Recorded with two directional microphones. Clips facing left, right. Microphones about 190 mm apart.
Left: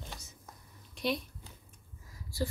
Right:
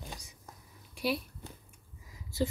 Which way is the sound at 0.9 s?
5° right (ahead or behind).